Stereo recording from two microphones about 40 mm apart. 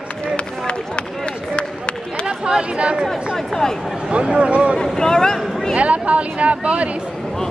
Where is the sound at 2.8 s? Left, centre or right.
Right.